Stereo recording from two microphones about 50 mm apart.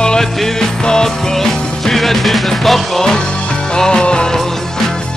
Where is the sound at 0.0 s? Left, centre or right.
Centre.